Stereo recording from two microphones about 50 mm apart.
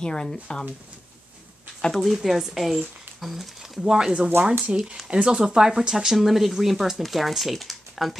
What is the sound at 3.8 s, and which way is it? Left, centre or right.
Speech, centre.